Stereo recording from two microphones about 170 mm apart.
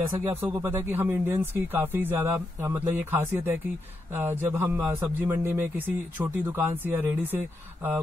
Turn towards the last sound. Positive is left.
turn(degrees=-10)  # may be behind; listen again after turning